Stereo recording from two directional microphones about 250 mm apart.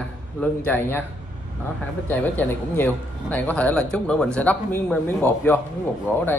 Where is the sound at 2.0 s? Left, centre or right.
Centre.